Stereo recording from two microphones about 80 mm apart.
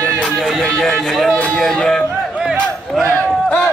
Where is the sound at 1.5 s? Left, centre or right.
Centre.